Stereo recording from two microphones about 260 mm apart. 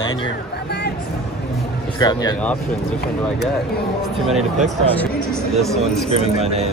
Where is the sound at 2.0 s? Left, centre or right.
Centre.